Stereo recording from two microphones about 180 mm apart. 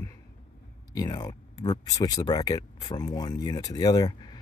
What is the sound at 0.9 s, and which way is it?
Speech, 20° left (ahead or behind).